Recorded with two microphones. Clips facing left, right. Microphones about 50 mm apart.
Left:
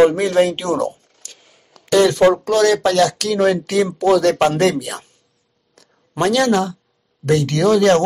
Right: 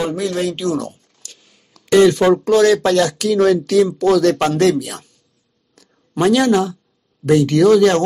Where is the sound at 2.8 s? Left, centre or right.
Right.